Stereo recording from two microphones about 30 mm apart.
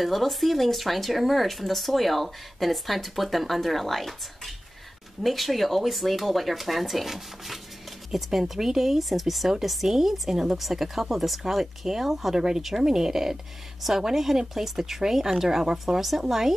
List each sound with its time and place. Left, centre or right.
0.0 s speech: centre
5.2 s speech: centre